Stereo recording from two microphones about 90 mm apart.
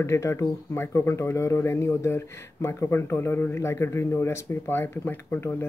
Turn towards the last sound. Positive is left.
turn(degrees=25)  # may be behind; listen again after turning